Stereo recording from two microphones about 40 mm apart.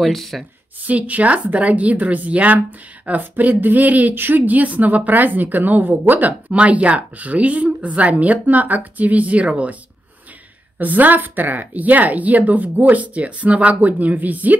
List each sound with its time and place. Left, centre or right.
0.0 s speech: centre
0.8 s a woman's voice: right
4.1 s speech: right
6.5 s a woman's voice: right
10.8 s speech: right